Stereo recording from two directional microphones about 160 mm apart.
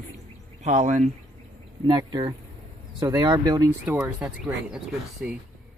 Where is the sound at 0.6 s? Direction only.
45° right (ahead or behind).